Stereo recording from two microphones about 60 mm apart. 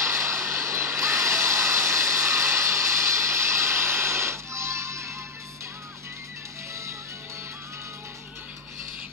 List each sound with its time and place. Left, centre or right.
0.0 s vehicle: right